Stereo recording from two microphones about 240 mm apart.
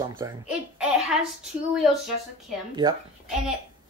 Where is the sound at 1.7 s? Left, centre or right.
Centre.